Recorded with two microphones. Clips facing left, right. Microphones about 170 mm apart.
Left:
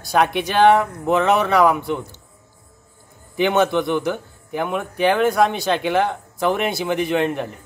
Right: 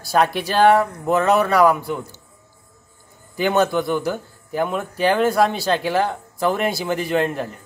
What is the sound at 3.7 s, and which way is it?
Speech, 20° left (ahead or behind).